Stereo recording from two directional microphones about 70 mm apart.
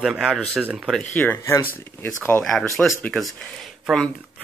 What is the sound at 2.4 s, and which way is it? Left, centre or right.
Speech, centre.